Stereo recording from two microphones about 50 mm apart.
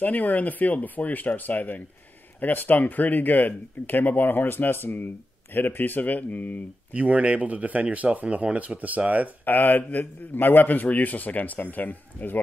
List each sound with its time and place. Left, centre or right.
0.0 s speech: left
6.9 s speech: right
9.4 s speech: left